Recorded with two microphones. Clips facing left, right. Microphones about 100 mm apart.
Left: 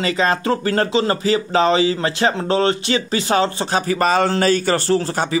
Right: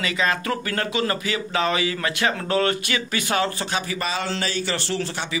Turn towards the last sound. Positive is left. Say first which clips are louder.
# left 9 dB
turn(degrees=40)  # may be behind; listen again after turning